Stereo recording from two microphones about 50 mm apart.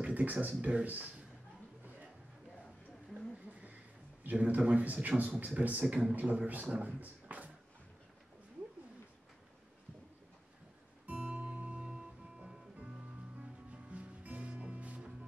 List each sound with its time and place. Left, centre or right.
0.0 s speech: right
4.2 s speech: right
11.1 s music: centre
11.8 s music: centre
12.7 s music: right